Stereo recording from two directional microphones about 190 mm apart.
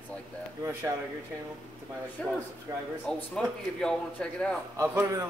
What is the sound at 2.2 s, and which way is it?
A man's voice, 5° left (ahead or behind).